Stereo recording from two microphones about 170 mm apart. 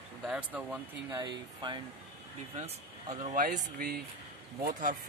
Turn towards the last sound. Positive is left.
turn(degrees=-60)  # may be behind; listen again after turning